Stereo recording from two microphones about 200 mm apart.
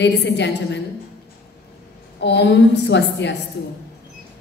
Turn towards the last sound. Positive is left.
turn(degrees=60)  # may be behind; listen again after turning